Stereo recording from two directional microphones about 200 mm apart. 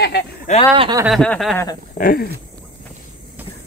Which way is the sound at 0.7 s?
25° right (ahead or behind).